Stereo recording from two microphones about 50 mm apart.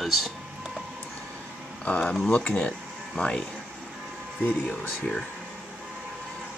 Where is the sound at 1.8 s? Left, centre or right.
Left.